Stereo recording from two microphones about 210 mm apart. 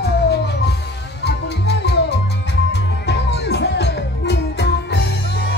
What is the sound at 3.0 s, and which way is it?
Music, 55° left (ahead or behind).